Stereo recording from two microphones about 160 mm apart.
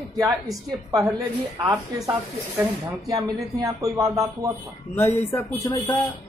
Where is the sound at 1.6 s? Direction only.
20° right (ahead or behind).